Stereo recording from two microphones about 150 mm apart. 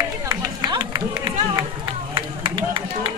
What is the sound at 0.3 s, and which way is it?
Run, 25° right (ahead or behind).